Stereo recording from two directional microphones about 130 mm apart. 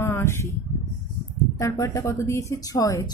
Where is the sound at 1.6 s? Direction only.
25° left (ahead or behind).